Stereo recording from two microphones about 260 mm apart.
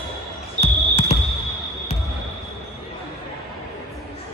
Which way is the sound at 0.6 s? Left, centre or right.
Left.